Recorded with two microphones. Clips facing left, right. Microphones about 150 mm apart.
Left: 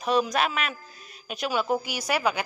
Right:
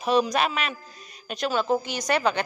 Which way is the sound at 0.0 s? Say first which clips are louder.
Right 2 dB; centre (ahead or behind).